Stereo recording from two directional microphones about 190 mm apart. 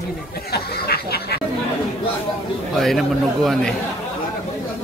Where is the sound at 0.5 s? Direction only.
55° left (ahead or behind).